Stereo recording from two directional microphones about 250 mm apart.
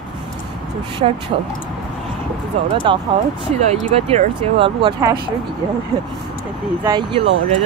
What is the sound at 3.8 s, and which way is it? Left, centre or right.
Speech, right.